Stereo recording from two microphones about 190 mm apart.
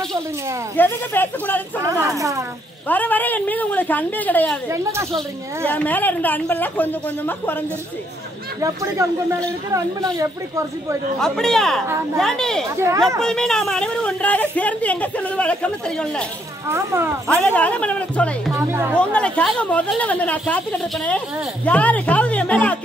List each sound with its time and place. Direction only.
0.7 s speech: 10° left (ahead or behind)
2.1 s speech: 15° right (ahead or behind)
2.9 s speech: 10° left (ahead or behind)
5.7 s speech: 10° left (ahead or behind)
8.5 s speech: 15° right (ahead or behind)
11.1 s a woman's voice: 5° left (ahead or behind)
12.7 s speech: 15° right (ahead or behind)
13.2 s a woman's voice: 5° left (ahead or behind)
16.6 s speech: 15° right (ahead or behind)
17.3 s speech: 5° left (ahead or behind)